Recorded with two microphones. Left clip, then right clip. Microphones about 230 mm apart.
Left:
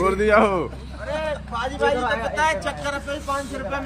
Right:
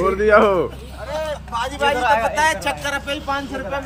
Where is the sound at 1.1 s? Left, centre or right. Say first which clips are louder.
Right 2 dB; right.